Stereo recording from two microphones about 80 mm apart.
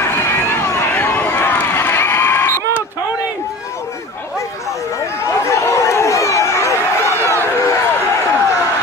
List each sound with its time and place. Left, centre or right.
0.0 s run: left
5.2 s chatter: left
7.2 s a sound: left